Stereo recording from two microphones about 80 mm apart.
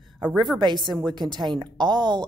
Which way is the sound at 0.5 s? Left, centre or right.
Right.